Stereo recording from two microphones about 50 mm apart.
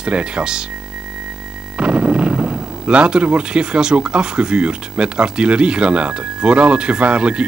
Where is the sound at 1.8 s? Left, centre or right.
Right.